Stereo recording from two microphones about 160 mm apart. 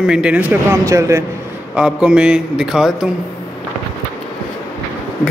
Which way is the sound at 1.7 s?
5° right (ahead or behind).